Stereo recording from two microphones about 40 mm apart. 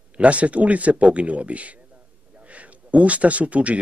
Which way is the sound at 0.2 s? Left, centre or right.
Right.